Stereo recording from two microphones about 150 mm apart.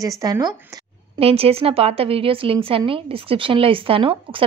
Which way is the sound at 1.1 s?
40° right (ahead or behind).